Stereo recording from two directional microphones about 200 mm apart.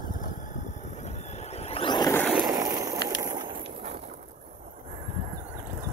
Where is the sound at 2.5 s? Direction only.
15° right (ahead or behind).